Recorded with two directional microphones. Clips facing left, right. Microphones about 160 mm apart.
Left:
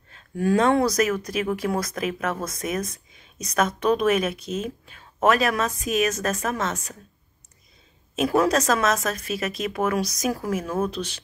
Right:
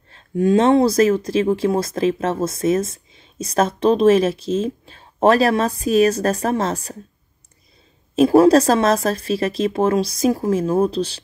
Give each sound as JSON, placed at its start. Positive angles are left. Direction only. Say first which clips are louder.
{"t": 0.1, "sound": "speech", "louder": "right 6 dB", "side_deg": -25}
{"t": 8.2, "sound": "speech", "louder": "right 9 dB", "side_deg": -30}